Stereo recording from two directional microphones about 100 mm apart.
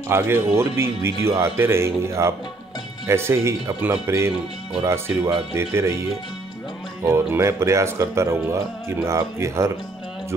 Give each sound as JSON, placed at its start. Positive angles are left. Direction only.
{"t": 0.1, "sound": "speech", "side_deg": -25}
{"t": 7.0, "sound": "speech", "side_deg": -25}